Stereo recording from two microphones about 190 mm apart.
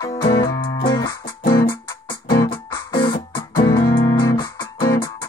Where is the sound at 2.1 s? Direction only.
20° left (ahead or behind).